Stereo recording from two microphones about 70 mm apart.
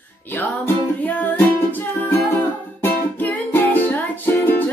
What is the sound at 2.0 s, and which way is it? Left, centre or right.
Music, left.